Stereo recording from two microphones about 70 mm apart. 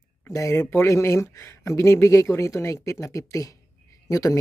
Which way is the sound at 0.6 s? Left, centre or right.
Left.